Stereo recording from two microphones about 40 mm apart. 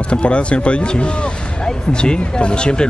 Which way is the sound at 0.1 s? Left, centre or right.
Left.